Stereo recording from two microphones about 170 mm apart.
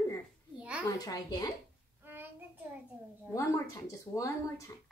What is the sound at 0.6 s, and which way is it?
Speech, 5° right (ahead or behind).